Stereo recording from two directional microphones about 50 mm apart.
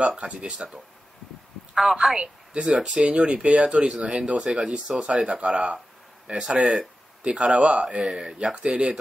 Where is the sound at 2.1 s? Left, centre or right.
Centre.